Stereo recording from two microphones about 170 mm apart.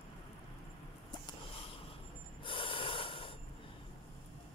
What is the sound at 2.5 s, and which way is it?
Snort, 30° left (ahead or behind).